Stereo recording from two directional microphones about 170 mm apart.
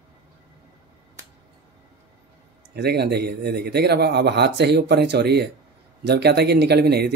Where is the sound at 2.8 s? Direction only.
75° right (ahead or behind).